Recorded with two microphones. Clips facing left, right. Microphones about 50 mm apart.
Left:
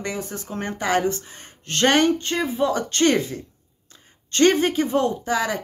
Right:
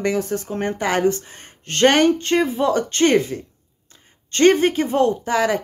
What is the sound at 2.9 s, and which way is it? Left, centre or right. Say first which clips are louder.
Speech: right 3 dB; right.